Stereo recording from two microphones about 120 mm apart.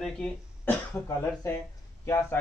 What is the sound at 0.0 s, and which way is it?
Speech, 10° left (ahead or behind).